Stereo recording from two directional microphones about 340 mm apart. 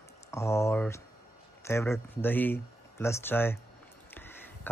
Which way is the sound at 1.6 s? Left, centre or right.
Centre.